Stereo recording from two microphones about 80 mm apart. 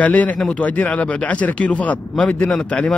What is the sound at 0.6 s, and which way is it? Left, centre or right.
Speech, centre.